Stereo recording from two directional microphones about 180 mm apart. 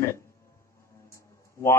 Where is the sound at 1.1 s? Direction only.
15° left (ahead or behind).